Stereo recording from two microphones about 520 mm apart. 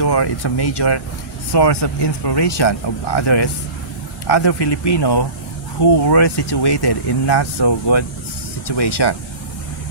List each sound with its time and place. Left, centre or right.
0.0 s speech: left